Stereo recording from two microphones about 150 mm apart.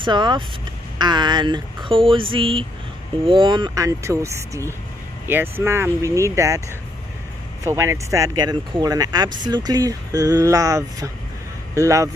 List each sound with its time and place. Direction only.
0.0 s speech: 30° right (ahead or behind)
7.6 s speech: 15° right (ahead or behind)